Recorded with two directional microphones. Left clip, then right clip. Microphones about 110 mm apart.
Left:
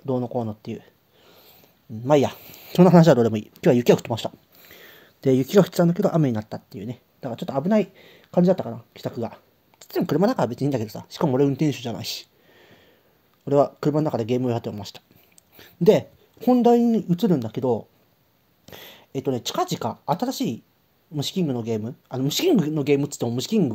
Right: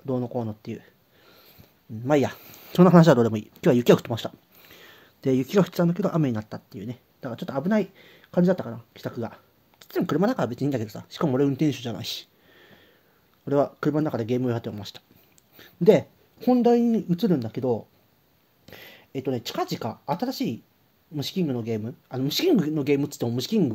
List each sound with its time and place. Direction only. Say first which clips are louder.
0.0 s speech: left 3 dB; 35° left (ahead or behind)
5.2 s speech: left 4 dB; 40° left (ahead or behind)